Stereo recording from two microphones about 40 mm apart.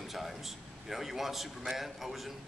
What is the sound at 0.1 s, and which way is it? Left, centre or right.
A man's voice, centre.